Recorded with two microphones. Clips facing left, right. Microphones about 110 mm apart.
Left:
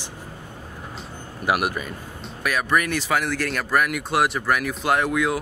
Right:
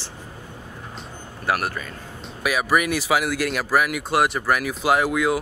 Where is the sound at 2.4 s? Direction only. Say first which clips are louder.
Right 1 dB; 5° right (ahead or behind).